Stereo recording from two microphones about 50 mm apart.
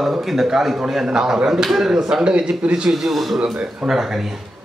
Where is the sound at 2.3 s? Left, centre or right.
Right.